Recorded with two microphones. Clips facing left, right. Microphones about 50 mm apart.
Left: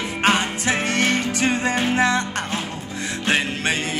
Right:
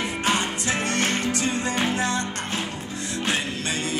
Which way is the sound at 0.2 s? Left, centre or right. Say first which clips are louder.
Left 7 dB; left.